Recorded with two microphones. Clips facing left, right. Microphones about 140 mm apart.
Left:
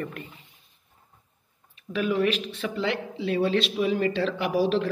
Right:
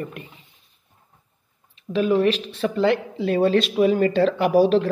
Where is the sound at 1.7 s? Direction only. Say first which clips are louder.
Right 6 dB; 30° right (ahead or behind).